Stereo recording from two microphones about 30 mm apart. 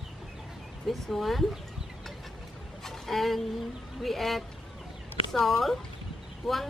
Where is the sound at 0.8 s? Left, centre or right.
Centre.